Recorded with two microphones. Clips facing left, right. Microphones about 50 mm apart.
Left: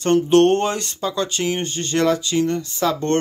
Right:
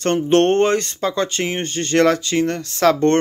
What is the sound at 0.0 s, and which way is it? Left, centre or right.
Speech, right.